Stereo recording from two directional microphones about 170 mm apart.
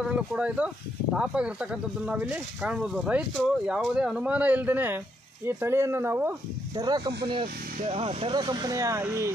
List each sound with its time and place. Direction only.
0.0 s speech: 5° right (ahead or behind)